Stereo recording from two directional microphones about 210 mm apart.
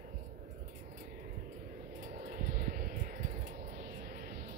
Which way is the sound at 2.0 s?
35° right (ahead or behind).